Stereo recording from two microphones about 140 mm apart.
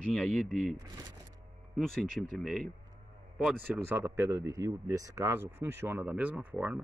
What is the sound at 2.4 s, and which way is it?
Speech, 5° right (ahead or behind).